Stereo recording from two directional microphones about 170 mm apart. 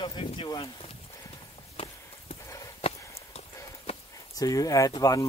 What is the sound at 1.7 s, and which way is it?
Walk, 35° left (ahead or behind).